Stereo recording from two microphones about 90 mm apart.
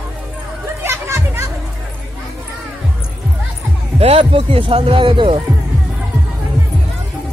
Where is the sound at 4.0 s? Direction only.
85° right.